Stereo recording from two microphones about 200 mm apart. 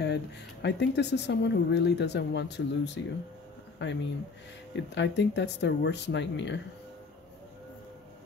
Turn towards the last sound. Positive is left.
turn(degrees=65)  # may be behind; listen again after turning